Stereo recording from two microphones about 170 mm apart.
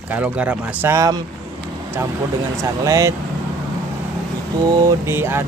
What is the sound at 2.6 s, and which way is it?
Speech, 20° right (ahead or behind).